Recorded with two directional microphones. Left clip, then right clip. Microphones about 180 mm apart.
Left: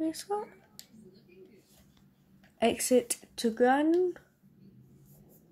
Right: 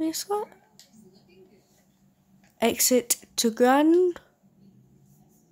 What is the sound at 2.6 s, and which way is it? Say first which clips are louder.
Speech: right 3 dB; 20° right (ahead or behind).